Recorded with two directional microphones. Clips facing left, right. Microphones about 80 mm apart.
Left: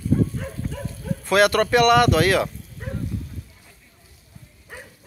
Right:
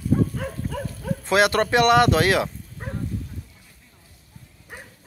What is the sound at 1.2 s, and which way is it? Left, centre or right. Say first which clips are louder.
Speech: left 2 dB; right.